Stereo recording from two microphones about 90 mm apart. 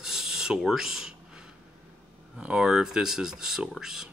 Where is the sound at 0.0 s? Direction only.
5° right (ahead or behind).